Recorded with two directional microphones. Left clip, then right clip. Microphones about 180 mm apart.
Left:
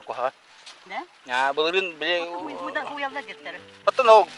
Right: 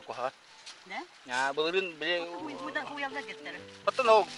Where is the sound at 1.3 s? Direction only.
10° right (ahead or behind).